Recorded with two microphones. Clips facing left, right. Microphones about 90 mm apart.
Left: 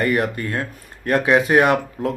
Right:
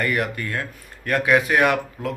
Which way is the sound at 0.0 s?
25° left (ahead or behind).